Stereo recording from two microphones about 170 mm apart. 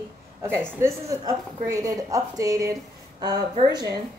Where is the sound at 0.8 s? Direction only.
15° right (ahead or behind).